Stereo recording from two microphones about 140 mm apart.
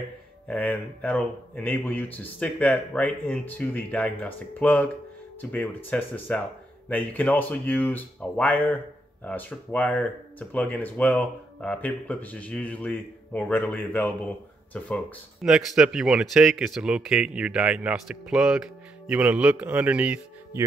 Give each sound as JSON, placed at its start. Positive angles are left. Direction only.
{"t": 0.5, "sound": "speech", "side_deg": 10}
{"t": 15.4, "sound": "speech", "side_deg": -5}